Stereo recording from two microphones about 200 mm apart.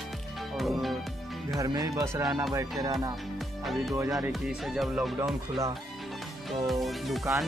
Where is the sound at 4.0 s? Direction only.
15° right (ahead or behind).